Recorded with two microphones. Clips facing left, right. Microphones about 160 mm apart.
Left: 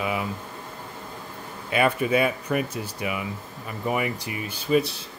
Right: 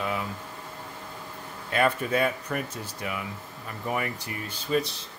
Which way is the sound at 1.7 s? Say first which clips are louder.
Left 3 dB; 10° left (ahead or behind).